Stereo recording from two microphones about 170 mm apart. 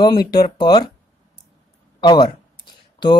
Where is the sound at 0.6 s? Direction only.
25° left (ahead or behind).